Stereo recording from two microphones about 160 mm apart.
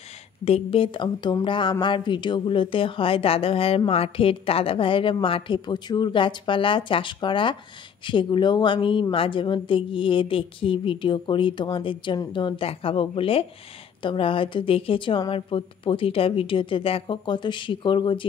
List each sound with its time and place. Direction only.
0.5 s speech: 35° left (ahead or behind)